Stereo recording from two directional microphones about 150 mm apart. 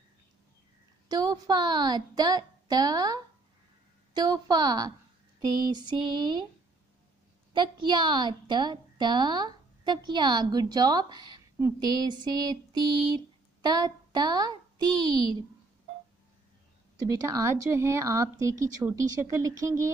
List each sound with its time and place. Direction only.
1.0 s a woman's voice: 25° right (ahead or behind)
7.5 s a woman's voice: 30° right (ahead or behind)
17.3 s a woman's voice: 20° right (ahead or behind)